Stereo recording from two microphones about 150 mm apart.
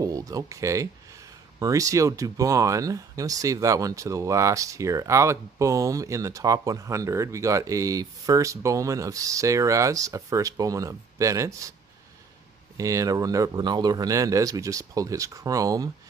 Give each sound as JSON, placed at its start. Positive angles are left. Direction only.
{"t": 0.0, "sound": "speech", "side_deg": -25}
{"t": 12.7, "sound": "speech", "side_deg": -20}